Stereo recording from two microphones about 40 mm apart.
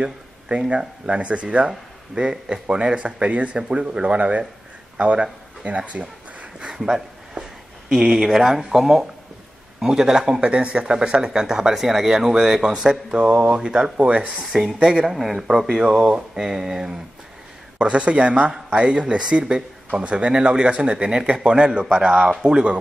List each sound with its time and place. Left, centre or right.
0.0 s speech: right
1.7 s speech: centre; by 6.0 s right
6.8 s a sound: centre
7.9 s speech: centre
10.4 s speech: right
13.2 s speech: right
13.6 s speech: centre
15.0 s speech: centre
17.7 s speech: right